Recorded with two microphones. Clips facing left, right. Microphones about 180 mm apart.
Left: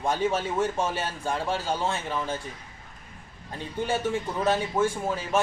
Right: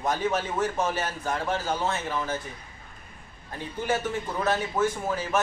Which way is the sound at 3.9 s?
25° left (ahead or behind).